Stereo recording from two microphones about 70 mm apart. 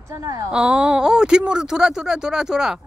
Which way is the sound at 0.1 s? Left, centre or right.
Right.